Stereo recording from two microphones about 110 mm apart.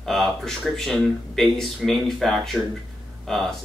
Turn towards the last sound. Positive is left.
turn(degrees=5)  # may be behind; listen again after turning